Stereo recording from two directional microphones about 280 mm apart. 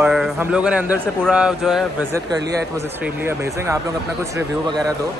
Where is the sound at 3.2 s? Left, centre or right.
Centre.